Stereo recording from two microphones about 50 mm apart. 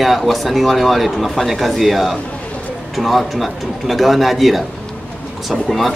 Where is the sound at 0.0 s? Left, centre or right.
Centre.